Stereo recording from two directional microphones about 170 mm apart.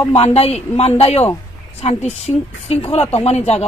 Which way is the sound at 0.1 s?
35° left (ahead or behind).